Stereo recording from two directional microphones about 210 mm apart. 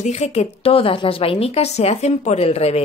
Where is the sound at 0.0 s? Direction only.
30° left (ahead or behind).